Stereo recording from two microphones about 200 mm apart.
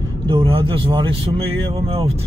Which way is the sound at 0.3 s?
25° right (ahead or behind).